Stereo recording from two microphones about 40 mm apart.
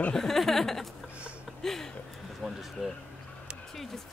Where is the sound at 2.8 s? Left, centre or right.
Centre.